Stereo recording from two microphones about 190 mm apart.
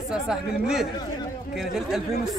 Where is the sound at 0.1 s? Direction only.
5° right (ahead or behind).